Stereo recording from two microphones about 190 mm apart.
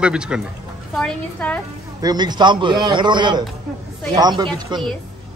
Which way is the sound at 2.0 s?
20° right (ahead or behind).